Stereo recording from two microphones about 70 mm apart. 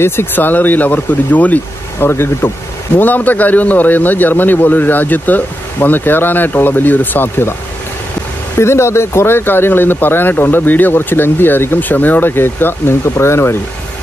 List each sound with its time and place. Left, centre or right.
0.0 s a man's voice: left
2.0 s a man's voice: left
8.5 s speech: left